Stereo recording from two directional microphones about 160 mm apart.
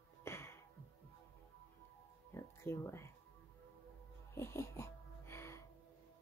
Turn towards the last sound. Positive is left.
turn(degrees=15)  # may be behind; listen again after turning